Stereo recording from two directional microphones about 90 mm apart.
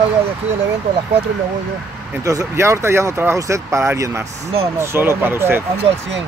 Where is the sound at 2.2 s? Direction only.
35° right (ahead or behind).